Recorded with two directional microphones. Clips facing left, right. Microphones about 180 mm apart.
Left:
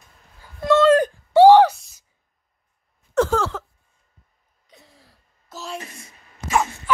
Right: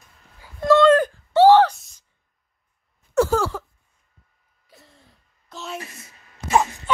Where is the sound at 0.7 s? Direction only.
Centre (ahead or behind).